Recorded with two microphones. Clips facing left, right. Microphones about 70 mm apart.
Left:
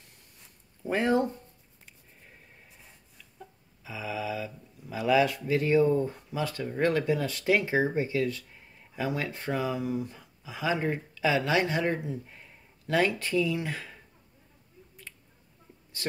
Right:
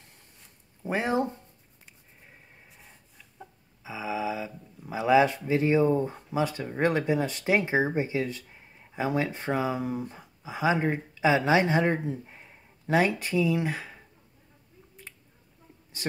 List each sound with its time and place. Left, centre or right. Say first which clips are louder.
0.8 s speech: left 1 dB; centre
3.2 s a sound: right 1 dB; right
5.5 s speech: right 1 dB; right